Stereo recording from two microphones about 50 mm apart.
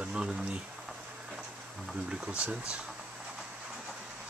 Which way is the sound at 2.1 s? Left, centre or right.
Right.